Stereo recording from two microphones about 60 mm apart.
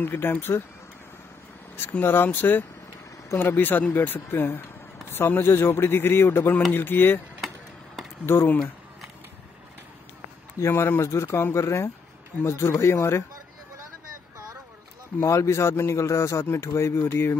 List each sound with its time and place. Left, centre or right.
0.0 s speech: left
1.8 s speech: left
8.3 s speech: left
10.6 s speech: left
15.2 s speech: left